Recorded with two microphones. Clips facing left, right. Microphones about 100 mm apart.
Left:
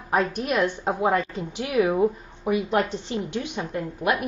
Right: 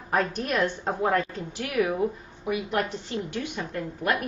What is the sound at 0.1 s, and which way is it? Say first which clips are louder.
A woman's voice: left 3 dB; 10° left (ahead or behind).